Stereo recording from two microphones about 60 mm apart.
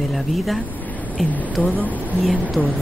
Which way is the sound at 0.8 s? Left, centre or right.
Left.